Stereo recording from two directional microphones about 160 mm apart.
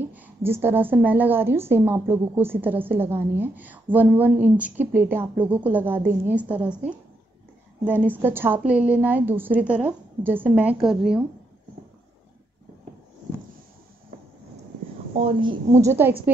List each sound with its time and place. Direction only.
0.1 s a woman's voice: 10° right (ahead or behind)
8.1 s a woman's voice: 15° right (ahead or behind)
15.1 s a woman's voice: 35° right (ahead or behind)
15.7 s a woman's voice: 15° right (ahead or behind)